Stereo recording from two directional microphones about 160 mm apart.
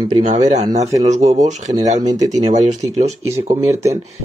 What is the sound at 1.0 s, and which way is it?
Speech, 45° right (ahead or behind).